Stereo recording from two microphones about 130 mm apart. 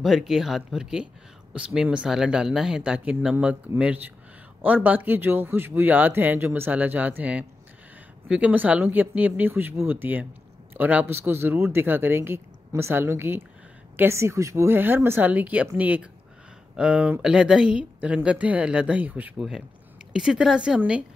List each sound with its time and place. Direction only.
0.0 s a woman's voice: centre (ahead or behind)